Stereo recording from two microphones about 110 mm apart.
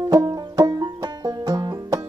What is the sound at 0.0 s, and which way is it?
Banjo, 30° right (ahead or behind).